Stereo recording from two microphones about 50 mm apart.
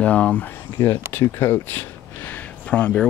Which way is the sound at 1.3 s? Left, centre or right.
Left.